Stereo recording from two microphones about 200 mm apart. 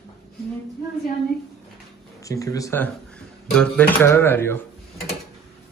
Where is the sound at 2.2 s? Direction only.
15° left (ahead or behind).